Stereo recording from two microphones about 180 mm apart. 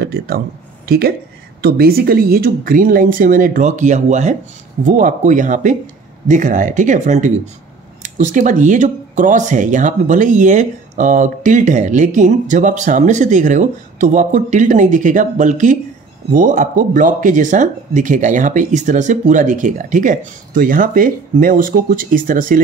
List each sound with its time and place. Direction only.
0.0 s speech: 60° right (ahead or behind)